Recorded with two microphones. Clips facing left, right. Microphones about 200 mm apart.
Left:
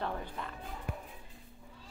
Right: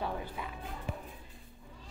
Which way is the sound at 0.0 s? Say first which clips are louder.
Right 1 dB; 5° right (ahead or behind).